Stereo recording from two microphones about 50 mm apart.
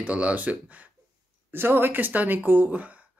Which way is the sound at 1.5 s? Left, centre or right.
Right.